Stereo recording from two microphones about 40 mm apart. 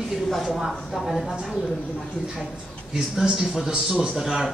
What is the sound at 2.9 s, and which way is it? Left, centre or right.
A woman's voice, centre.